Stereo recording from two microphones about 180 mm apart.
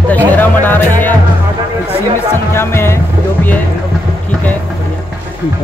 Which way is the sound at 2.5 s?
15° left (ahead or behind).